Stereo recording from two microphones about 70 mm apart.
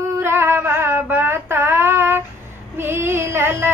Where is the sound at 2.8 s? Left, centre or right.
Right.